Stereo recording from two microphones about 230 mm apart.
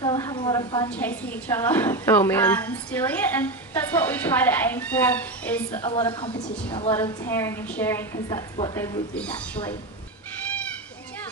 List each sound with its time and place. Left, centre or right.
0.0 s a sound: centre
0.8 s a woman's voice: centre
5.7 s a woman's voice: centre
6.4 s a woman's voice: centre